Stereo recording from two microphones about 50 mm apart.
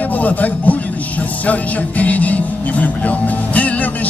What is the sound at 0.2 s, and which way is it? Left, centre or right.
A man's voice, left.